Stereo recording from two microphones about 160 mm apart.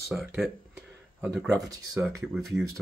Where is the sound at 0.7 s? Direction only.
10° right (ahead or behind).